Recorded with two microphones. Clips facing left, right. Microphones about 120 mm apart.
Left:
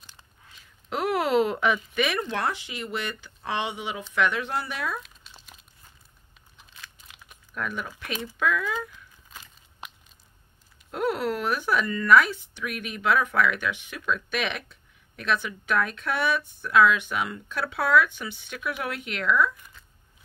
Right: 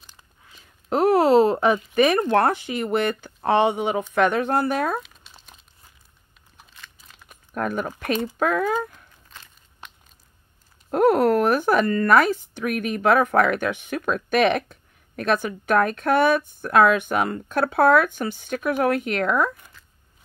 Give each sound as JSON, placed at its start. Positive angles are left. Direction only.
{"t": 0.8, "sound": "speech", "side_deg": -40}
{"t": 5.0, "sound": "crumpling", "side_deg": 0}
{"t": 7.2, "sound": "speech", "side_deg": -45}
{"t": 9.3, "sound": "crunch", "side_deg": 5}
{"t": 10.9, "sound": "speech", "side_deg": -50}